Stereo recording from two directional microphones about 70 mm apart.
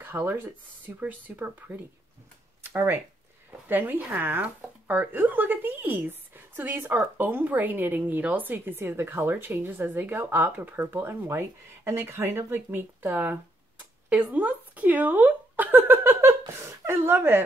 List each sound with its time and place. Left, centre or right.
0.0 s speech: right
2.6 s a sound: right
3.6 s a woman's voice: right